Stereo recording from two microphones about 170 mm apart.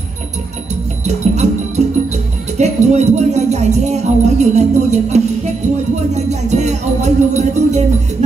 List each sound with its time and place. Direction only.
1.0 s music: 40° right (ahead or behind)
2.5 s speech: 40° right (ahead or behind)
6.1 s music: 40° right (ahead or behind)